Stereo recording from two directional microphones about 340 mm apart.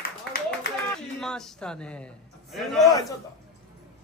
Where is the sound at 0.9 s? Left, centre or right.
Centre.